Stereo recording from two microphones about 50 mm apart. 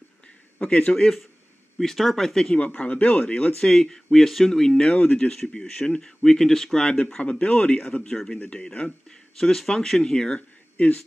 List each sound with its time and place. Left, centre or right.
0.6 s a man's voice: left
1.8 s speech: centre
2.5 s a man's voice: left
3.6 s speech: centre
4.8 s a man's voice: left